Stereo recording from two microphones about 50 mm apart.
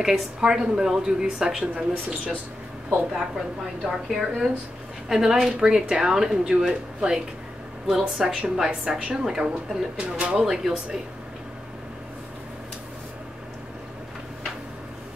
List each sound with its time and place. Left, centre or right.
0.0 s a woman's voice: centre
3.1 s a woman's voice: centre
9.9 s speech: right
10.4 s a woman's voice: centre